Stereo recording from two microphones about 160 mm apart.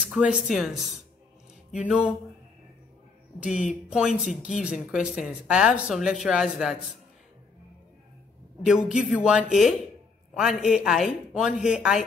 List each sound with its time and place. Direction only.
0.0 s speech: 5° right (ahead or behind)
1.7 s a sound: 5° right (ahead or behind)
3.3 s speech: 5° right (ahead or behind)
8.6 s speech: 5° right (ahead or behind)